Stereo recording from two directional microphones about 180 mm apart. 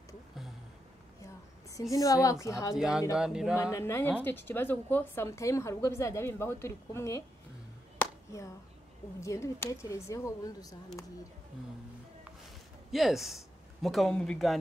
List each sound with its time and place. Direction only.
1.2 s a woman's voice: 20° left (ahead or behind)
2.7 s speech: 5° right (ahead or behind)
3.7 s speech: 15° left (ahead or behind)
8.0 s a sound: 15° left (ahead or behind)
9.2 s speech: 15° left (ahead or behind)
12.9 s speech: centre (ahead or behind)